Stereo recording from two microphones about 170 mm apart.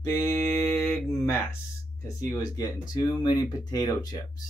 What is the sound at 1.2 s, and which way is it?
Speech, 15° left (ahead or behind).